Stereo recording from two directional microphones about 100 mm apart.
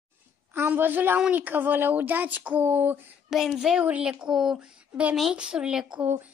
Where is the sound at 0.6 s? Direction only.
20° right (ahead or behind).